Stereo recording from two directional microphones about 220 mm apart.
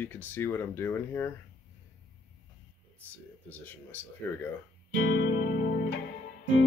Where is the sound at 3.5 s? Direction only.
10° left (ahead or behind).